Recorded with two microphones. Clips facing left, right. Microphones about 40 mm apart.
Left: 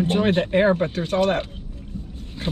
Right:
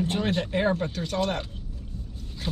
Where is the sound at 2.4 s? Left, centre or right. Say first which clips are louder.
Left 5 dB; left.